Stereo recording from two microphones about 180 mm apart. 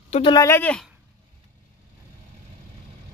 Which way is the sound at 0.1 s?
25° left (ahead or behind).